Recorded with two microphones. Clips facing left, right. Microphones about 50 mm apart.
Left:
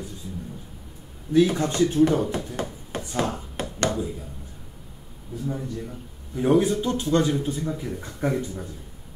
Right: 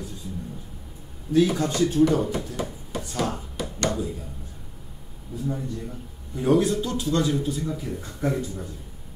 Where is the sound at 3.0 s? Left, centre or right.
Centre.